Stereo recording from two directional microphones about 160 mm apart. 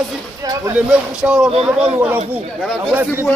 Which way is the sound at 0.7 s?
5° right (ahead or behind).